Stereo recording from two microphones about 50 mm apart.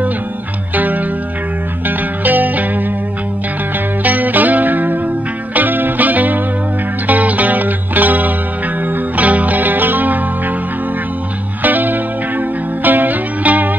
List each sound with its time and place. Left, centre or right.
1.9 s music: right
4.0 s music: right
11.6 s music: right